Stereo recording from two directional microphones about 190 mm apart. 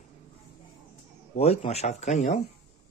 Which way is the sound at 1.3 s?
35° left (ahead or behind).